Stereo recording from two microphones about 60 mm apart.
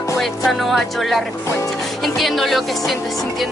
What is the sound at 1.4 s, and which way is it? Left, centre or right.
Speech, left.